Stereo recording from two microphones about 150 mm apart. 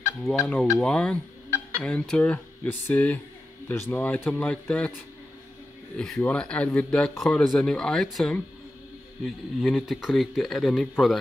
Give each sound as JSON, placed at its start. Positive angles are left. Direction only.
{"t": 0.2, "sound": "speech", "side_deg": 0}
{"t": 5.9, "sound": "speech", "side_deg": 5}